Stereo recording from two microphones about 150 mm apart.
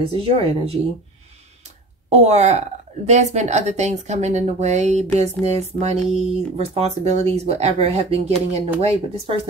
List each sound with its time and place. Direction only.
0.0 s speech: 40° right (ahead or behind)
2.0 s speech: 45° right (ahead or behind)